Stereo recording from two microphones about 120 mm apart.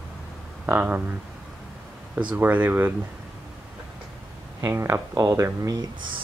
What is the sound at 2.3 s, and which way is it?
Speech, 15° right (ahead or behind).